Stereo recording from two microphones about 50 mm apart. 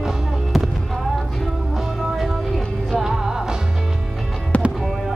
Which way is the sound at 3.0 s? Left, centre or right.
Centre.